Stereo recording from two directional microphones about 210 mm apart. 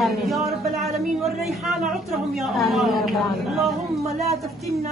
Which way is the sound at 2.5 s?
Centre (ahead or behind).